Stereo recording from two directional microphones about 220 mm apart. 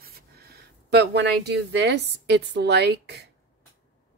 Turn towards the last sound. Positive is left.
turn(degrees=-50)  # may be behind; listen again after turning